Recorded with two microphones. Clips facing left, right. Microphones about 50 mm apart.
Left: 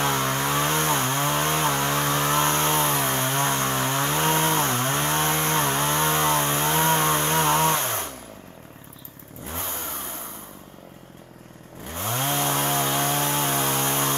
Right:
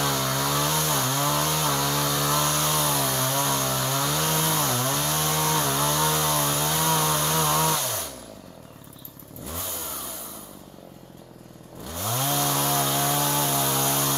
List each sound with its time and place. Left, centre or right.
0.0 s chainsaw: left
9.4 s vehicle: left
11.8 s chainsaw: left